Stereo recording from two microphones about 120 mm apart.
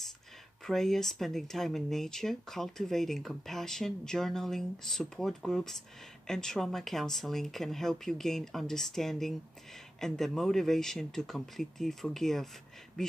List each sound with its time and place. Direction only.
0.7 s speech: 5° left (ahead or behind)